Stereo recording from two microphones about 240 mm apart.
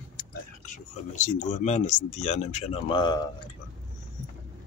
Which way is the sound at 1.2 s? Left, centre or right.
Left.